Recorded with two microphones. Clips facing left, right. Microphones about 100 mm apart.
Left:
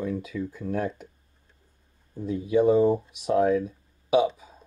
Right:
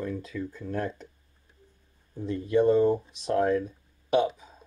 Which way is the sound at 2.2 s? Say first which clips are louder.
Left 1 dB; 5° left (ahead or behind).